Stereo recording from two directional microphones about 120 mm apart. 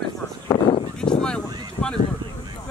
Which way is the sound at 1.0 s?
5° left (ahead or behind).